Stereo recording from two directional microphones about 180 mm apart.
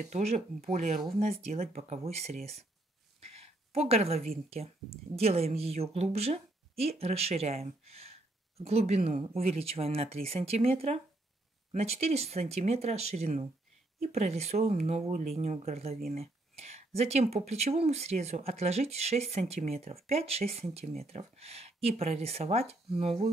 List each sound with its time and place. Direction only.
0.0 s a woman's voice: 35° right (ahead or behind)
3.7 s a woman's voice: 35° right (ahead or behind)